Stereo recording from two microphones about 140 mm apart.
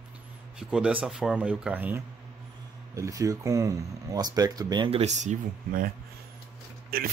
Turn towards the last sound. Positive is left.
turn(degrees=-90)